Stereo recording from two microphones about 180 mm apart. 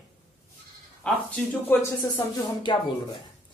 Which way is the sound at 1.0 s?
10° left (ahead or behind).